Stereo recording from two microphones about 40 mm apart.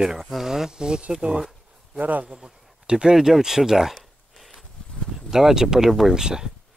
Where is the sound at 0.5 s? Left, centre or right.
Centre.